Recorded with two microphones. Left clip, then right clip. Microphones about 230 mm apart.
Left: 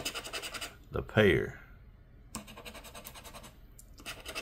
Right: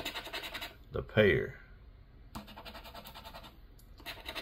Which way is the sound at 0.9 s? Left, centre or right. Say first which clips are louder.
Left 1 dB; centre.